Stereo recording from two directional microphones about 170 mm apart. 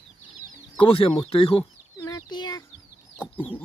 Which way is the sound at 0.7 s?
30° left (ahead or behind).